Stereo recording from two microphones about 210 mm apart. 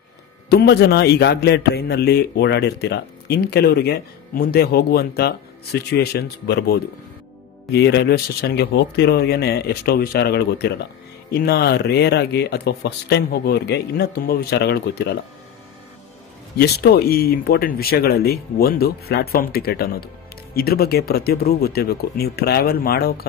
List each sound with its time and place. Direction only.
0.5 s a man's voice: 50° left (ahead or behind)
16.5 s a man's voice: 50° left (ahead or behind)